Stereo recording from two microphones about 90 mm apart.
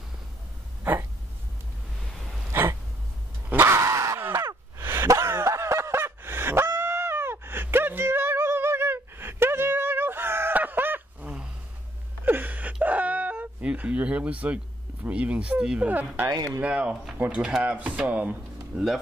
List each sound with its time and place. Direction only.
3.4 s dog: 25° right (ahead or behind)
4.7 s a sound: 30° right (ahead or behind)
15.0 s speech: 15° right (ahead or behind)
16.3 s speech: 40° right (ahead or behind)
16.6 s speech: 10° right (ahead or behind)